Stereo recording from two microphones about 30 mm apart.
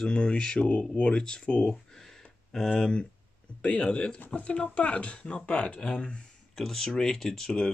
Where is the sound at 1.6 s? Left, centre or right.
Centre.